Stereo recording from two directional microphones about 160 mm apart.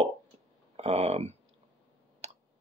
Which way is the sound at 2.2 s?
45° right (ahead or behind).